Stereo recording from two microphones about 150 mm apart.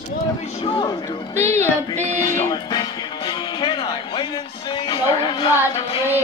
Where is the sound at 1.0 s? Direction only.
15° left (ahead or behind).